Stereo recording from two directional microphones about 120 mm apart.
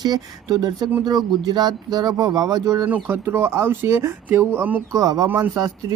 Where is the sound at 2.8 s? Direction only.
15° right (ahead or behind).